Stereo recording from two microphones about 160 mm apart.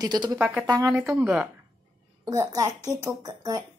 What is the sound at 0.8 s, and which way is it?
Speech, 5° right (ahead or behind).